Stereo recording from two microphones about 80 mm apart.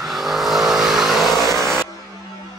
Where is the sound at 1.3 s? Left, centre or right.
Left.